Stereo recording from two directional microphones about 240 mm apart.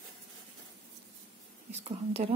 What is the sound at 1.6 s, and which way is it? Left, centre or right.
Speech, right.